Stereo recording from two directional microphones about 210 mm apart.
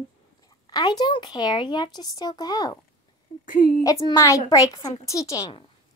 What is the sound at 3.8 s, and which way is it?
A woman's voice, 15° left (ahead or behind).